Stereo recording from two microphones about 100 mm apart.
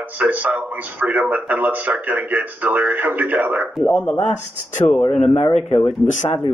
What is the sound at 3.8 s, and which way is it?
Speech, 30° left (ahead or behind).